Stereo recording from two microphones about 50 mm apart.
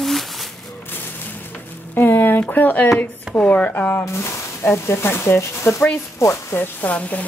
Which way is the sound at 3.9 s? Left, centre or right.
Left.